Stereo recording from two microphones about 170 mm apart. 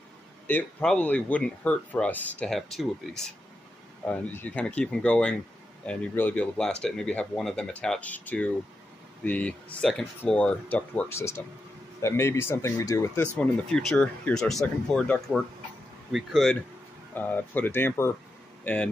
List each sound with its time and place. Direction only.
0.5 s speech: 10° left (ahead or behind)
13.4 s speech: 5° left (ahead or behind)
17.1 s speech: 10° left (ahead or behind)